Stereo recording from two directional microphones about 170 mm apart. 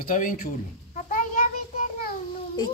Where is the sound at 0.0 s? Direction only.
50° left (ahead or behind).